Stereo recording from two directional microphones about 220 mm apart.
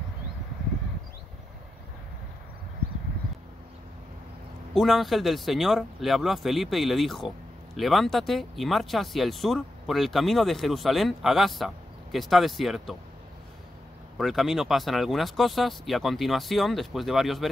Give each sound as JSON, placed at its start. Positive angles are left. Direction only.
{"t": 4.7, "sound": "speech", "side_deg": 0}
{"t": 14.1, "sound": "speech", "side_deg": 0}